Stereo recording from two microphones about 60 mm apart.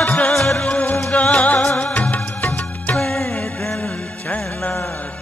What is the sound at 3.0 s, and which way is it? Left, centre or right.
Music, centre.